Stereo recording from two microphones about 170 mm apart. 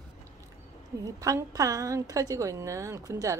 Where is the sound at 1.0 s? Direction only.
20° right (ahead or behind).